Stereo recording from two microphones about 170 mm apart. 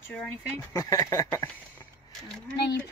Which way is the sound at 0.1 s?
10° left (ahead or behind).